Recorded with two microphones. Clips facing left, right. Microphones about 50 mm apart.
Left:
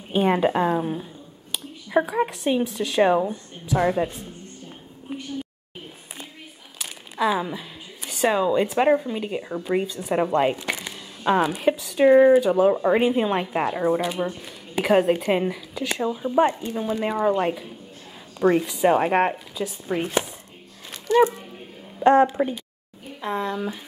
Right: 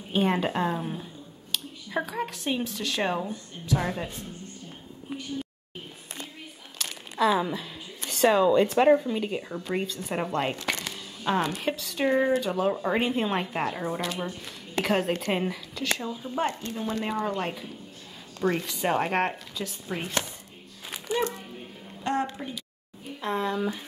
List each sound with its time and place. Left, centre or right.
0.1 s speech: centre
5.1 s a sound: centre
6.8 s speech: centre
22.4 s a woman's voice: left
23.2 s speech: centre